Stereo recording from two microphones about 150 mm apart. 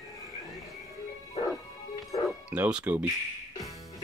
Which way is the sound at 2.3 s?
10° right (ahead or behind).